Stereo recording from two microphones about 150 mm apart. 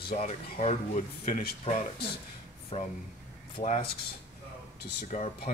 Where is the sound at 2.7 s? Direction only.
45° left (ahead or behind).